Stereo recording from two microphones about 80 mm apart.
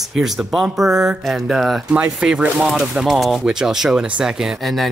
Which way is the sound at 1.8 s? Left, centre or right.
Centre.